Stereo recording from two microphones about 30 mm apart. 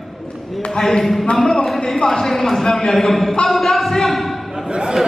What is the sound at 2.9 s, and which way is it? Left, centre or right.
Speech, centre.